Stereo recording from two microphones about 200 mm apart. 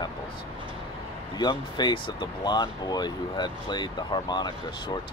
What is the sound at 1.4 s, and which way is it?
Speech, 20° left (ahead or behind).